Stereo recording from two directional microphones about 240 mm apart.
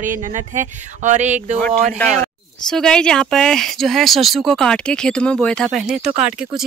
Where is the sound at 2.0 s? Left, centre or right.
Centre.